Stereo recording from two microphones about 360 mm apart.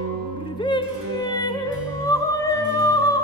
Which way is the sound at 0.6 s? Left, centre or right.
Centre.